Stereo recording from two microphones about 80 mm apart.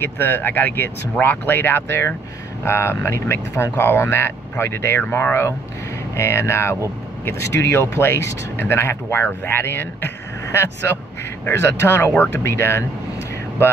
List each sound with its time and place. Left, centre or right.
0.0 s speech: left
7.9 s speech: left